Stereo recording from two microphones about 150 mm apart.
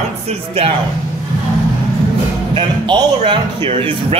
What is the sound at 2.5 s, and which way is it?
Speech, 30° right (ahead or behind).